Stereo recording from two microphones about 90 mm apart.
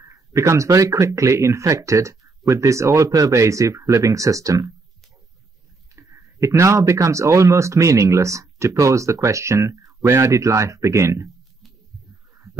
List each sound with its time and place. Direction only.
0.0 s speech: 35° right (ahead or behind)
5.9 s speech: 35° right (ahead or behind)